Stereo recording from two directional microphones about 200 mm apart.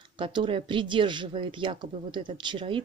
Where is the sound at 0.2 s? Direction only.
25° right (ahead or behind).